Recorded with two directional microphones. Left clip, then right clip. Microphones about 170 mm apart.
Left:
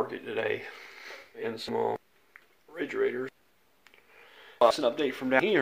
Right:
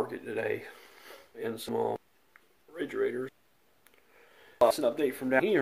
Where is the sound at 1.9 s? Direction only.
10° right (ahead or behind).